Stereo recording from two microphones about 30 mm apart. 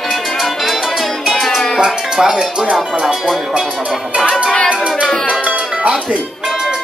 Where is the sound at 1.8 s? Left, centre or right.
Centre.